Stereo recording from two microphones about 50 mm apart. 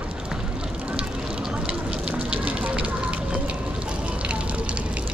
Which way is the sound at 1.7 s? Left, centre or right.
Centre.